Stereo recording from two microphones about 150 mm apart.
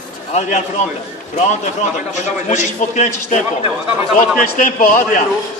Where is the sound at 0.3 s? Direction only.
50° left (ahead or behind).